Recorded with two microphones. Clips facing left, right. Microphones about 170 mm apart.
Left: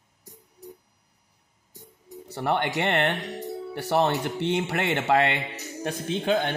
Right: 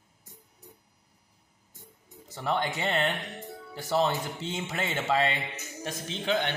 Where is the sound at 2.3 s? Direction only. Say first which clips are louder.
Left 4 dB; 65° left (ahead or behind).